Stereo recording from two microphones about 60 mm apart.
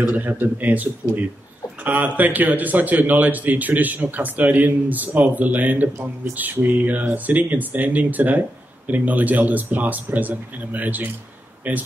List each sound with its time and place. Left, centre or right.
0.0 s speech: right